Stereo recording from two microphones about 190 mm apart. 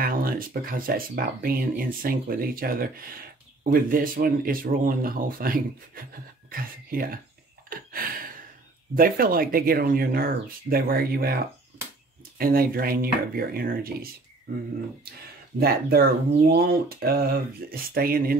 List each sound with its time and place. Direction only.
0.0 s speech: 50° right (ahead or behind)
8.9 s speech: 50° right (ahead or behind)
15.6 s speech: 55° right (ahead or behind)